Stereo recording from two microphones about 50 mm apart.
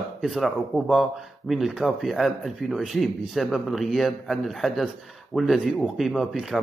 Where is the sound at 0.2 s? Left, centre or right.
Centre.